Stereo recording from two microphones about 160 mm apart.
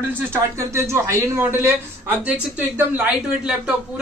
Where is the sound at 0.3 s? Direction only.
15° right (ahead or behind).